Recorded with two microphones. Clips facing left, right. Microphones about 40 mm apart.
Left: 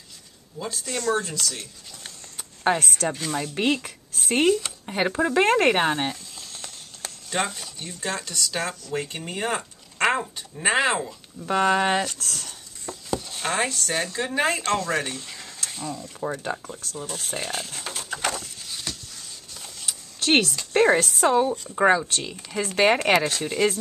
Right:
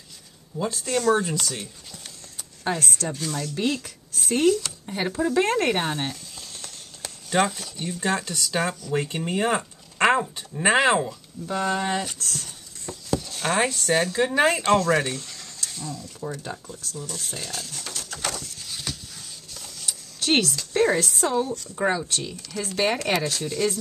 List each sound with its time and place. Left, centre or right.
0.6 s speech: centre
1.2 s speech: centre
2.6 s speech: left
7.2 s speech: centre
11.4 s speech: left
12.4 s a sound: centre
13.6 s speech: centre
15.6 s speech: left
18.7 s a sound: centre
19.5 s printer: centre
20.2 s a sound: left
20.7 s speech: left